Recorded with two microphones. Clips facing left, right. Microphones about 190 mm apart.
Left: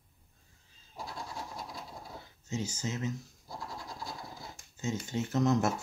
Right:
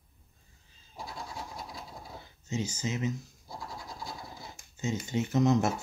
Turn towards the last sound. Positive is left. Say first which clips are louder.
# right 2 dB
turn(degrees=0)  # may be behind; listen again after turning